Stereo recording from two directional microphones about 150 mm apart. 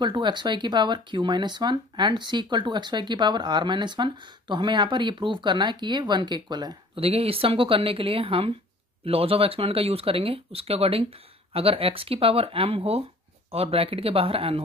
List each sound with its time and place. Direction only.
0.0 s speech: 30° right (ahead or behind)
7.1 s speech: 40° right (ahead or behind)